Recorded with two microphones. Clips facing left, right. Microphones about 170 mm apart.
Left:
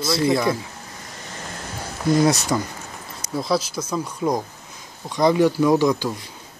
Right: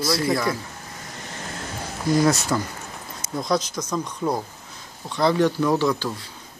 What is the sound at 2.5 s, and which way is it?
Speech, 15° left (ahead or behind).